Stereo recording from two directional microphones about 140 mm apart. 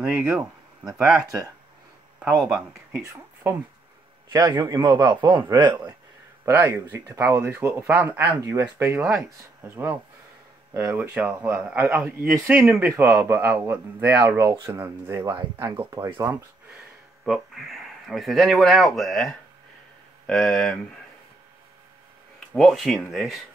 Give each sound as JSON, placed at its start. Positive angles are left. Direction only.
{"t": 0.0, "sound": "speech", "side_deg": -10}
{"t": 0.8, "sound": "speech", "side_deg": -25}
{"t": 2.2, "sound": "speech", "side_deg": -5}
{"t": 2.9, "sound": "speech", "side_deg": -20}
{"t": 4.3, "sound": "speech", "side_deg": -30}
{"t": 6.4, "sound": "speech", "side_deg": -15}
{"t": 17.2, "sound": "speech", "side_deg": 0}
{"t": 22.5, "sound": "speech", "side_deg": 5}